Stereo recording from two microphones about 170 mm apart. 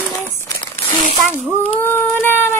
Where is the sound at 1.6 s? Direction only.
10° left (ahead or behind).